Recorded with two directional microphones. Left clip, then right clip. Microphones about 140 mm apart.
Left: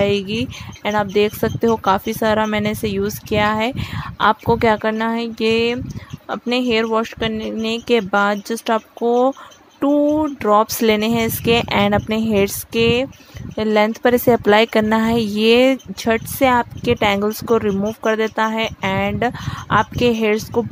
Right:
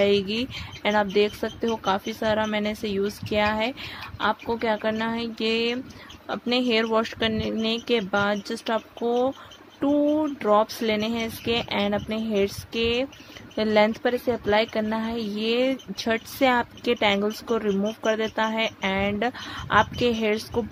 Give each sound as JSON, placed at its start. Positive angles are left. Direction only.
{"t": 0.0, "sound": "speech", "side_deg": 30}
{"t": 14.1, "sound": "a woman's voice", "side_deg": 50}
{"t": 16.1, "sound": "speech", "side_deg": 30}